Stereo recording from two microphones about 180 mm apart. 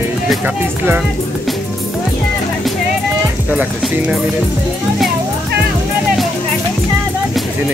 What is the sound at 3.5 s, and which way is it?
Speech, 5° right (ahead or behind).